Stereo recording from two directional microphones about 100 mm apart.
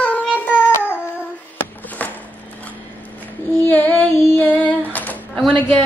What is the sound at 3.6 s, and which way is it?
Female singing, 20° left (ahead or behind).